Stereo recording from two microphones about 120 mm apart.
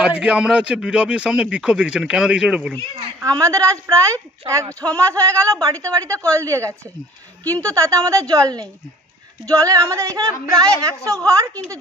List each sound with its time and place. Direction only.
0.0 s speech: 5° right (ahead or behind)
3.2 s a woman's voice: 25° right (ahead or behind)